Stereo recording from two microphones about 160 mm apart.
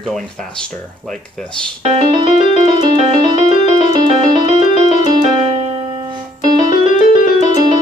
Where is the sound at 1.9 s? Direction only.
35° right (ahead or behind).